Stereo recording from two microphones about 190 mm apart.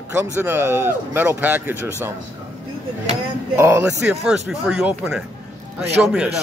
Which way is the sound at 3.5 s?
10° right (ahead or behind).